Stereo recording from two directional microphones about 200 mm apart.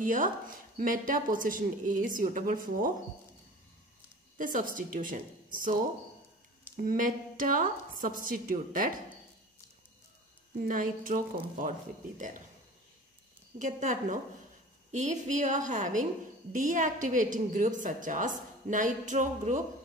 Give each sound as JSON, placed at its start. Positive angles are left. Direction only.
{"t": 0.0, "sound": "a woman's voice", "side_deg": -40}
{"t": 4.4, "sound": "a woman's voice", "side_deg": -40}
{"t": 6.8, "sound": "a woman's voice", "side_deg": -45}
{"t": 10.7, "sound": "a woman's voice", "side_deg": -45}
{"t": 13.7, "sound": "a woman's voice", "side_deg": -40}